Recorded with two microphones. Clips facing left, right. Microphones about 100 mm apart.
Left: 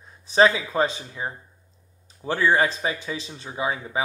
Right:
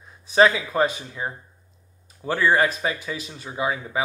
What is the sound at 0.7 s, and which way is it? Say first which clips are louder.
Speech: right 1 dB; 25° left (ahead or behind).